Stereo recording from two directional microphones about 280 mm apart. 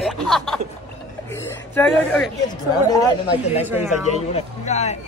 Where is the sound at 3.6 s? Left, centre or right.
Centre.